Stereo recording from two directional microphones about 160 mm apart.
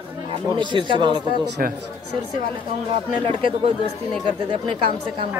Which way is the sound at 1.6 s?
65° right (ahead or behind).